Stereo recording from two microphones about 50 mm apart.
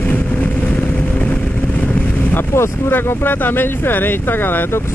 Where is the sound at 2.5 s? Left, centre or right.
Left.